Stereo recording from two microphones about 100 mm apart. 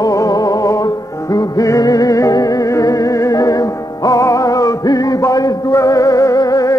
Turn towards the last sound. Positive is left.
turn(degrees=40)  # may be behind; listen again after turning